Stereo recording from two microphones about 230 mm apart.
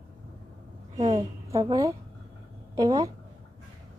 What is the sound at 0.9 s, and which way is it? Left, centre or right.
A woman's voice, centre.